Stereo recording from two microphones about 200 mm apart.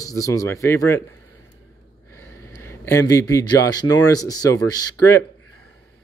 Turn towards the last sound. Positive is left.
turn(degrees=15)  # may be behind; listen again after turning